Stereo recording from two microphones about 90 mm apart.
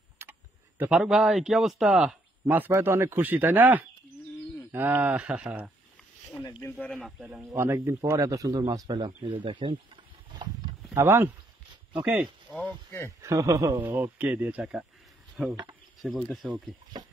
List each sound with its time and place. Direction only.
0.2 s tick-tock: 20° right (ahead or behind)
0.8 s speech: 10° right (ahead or behind)
2.4 s a man's voice: 20° right (ahead or behind)
6.8 s speech: 10° left (ahead or behind)
7.5 s speech: 30° right (ahead or behind); by 9.3 s 50° right (ahead or behind)
9.3 s speech: 70° right (ahead or behind)
11.0 s speech: 25° right (ahead or behind)
12.2 s speech: 5° right (ahead or behind)
13.2 s speech: 35° right (ahead or behind)
13.7 s speech: 20° right (ahead or behind)
15.4 s speech: 5° right (ahead or behind)
16.3 s speech: 15° right (ahead or behind)